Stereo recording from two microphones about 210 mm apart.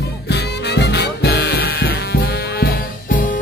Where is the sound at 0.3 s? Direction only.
55° left (ahead or behind).